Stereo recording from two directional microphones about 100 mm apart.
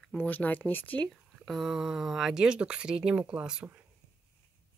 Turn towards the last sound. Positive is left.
turn(degrees=-10)  # may be behind; listen again after turning